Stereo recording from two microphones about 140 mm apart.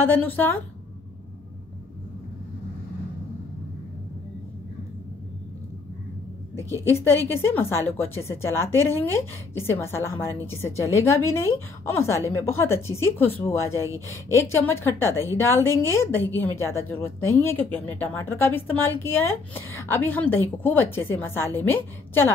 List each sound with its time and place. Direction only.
0.0 s a woman's voice: 15° left (ahead or behind)
6.8 s a woman's voice: 15° left (ahead or behind)